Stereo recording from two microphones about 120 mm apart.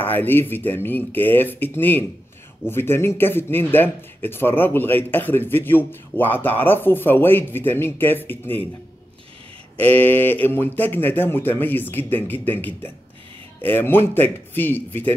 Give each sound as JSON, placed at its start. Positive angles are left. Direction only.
{"t": 0.0, "sound": "speech", "side_deg": 15}
{"t": 9.8, "sound": "speech", "side_deg": 15}